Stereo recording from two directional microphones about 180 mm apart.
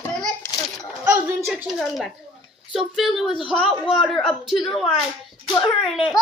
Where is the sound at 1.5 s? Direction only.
Centre (ahead or behind).